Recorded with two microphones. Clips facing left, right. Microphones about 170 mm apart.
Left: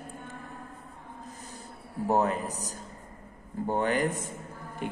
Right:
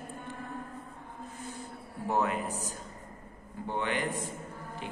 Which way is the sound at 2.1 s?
40° left (ahead or behind).